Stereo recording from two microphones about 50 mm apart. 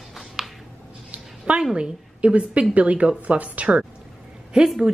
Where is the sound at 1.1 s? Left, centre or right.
Right.